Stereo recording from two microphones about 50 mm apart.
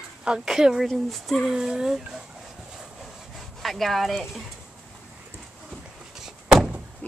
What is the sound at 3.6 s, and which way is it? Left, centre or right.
Speech, centre.